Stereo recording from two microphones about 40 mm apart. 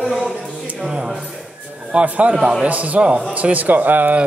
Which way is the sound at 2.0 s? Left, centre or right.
Right.